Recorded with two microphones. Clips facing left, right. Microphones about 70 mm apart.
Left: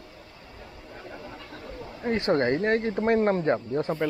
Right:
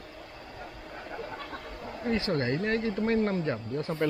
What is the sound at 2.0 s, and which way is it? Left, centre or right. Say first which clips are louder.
Speech: left 5 dB; left.